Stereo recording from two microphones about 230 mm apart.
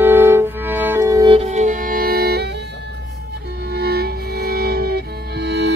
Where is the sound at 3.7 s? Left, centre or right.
Right.